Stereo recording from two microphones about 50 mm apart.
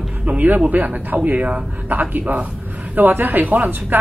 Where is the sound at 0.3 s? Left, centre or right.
Right.